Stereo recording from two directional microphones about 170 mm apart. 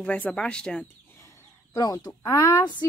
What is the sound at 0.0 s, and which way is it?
Speech, 5° left (ahead or behind).